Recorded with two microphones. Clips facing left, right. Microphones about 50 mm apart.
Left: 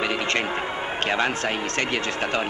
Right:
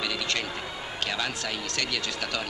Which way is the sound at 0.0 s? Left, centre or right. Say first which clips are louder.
Left 6 dB; left.